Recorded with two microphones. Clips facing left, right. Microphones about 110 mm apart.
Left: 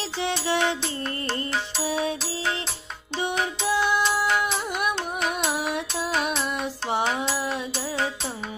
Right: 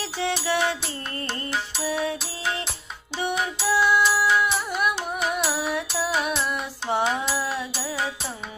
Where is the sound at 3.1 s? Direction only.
5° right (ahead or behind).